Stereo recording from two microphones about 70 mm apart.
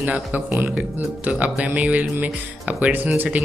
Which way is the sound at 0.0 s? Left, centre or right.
Right.